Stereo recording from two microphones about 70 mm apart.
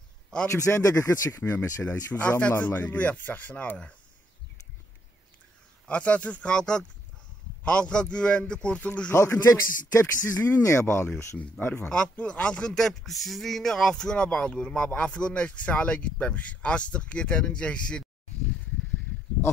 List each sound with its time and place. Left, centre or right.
0.5 s speech: left
1.4 s speech: left
1.9 s speech: left
5.9 s a man's voice: centre
9.1 s speech: left
9.5 s speech: left
10.6 s speech: left
11.6 s speech: left
11.9 s a man's voice: centre